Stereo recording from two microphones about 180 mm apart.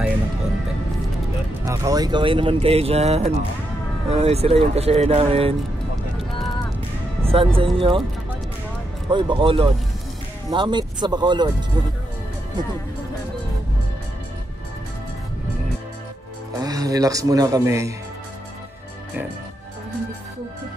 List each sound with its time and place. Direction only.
1.7 s speech: 20° right (ahead or behind)
7.2 s speech: 30° right (ahead or behind)
9.1 s speech: 25° right (ahead or behind)
16.5 s speech: 20° right (ahead or behind)